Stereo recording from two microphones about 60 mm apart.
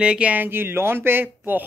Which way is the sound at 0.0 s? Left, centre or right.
Centre.